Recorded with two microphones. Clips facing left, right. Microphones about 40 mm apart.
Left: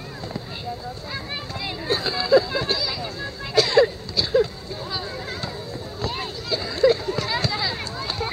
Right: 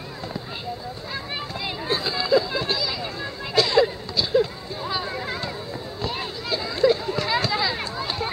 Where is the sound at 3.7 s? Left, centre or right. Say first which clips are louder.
Left 2 dB; centre.